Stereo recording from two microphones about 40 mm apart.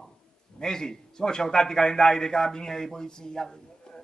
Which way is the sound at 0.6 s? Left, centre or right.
Centre.